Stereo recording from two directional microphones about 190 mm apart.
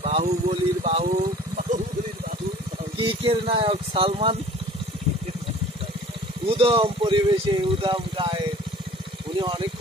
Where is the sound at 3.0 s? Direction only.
30° right (ahead or behind).